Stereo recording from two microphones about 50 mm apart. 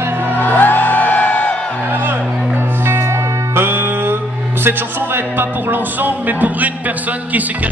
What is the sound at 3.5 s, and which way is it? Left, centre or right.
Music, right.